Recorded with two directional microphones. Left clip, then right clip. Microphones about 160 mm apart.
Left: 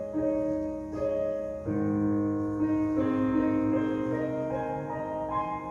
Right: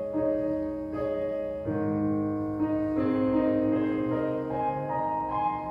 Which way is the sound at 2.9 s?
15° right (ahead or behind).